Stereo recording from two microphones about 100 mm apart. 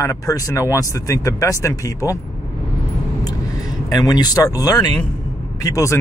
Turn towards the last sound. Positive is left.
turn(degrees=30)  # may be behind; listen again after turning